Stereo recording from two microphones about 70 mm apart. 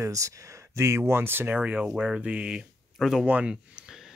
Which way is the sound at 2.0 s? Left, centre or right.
Centre.